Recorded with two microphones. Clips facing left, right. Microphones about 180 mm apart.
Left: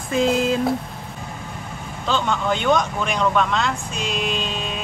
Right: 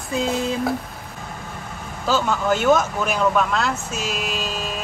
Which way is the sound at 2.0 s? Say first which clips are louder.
Right 1 dB; 5° right (ahead or behind).